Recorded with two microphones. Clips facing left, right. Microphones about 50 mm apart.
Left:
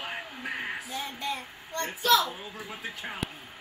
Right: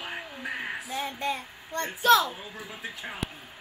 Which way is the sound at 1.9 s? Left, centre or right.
Right.